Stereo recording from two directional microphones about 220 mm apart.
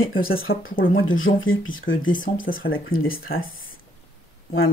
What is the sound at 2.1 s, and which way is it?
Speech, 40° left (ahead or behind).